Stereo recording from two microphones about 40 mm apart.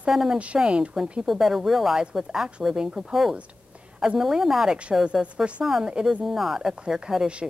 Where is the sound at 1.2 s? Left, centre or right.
Centre.